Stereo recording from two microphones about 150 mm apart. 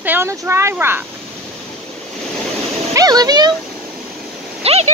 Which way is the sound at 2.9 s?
25° right (ahead or behind).